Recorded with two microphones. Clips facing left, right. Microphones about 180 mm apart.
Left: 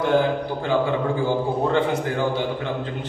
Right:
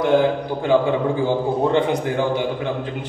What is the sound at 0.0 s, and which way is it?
A man's voice, 15° right (ahead or behind).